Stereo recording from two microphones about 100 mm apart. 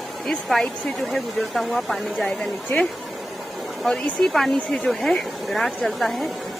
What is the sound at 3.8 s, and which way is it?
Speech, centre (ahead or behind).